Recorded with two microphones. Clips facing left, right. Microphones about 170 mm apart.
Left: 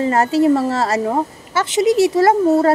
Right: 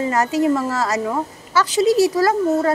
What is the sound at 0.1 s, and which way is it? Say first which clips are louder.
A woman's voice: left 4 dB; 30° left (ahead or behind).